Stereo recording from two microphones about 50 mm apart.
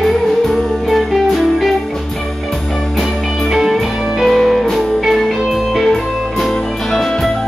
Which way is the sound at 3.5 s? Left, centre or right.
Centre.